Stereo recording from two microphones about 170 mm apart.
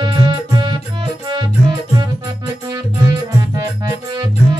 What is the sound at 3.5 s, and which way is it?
Music, 20° right (ahead or behind).